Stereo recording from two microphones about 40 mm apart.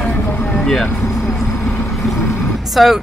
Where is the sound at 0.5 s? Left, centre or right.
Centre.